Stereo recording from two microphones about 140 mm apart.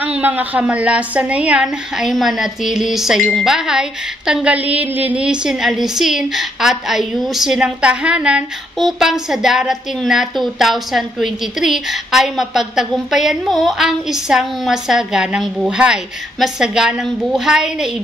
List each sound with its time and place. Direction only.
0.0 s a woman's voice: 10° right (ahead or behind)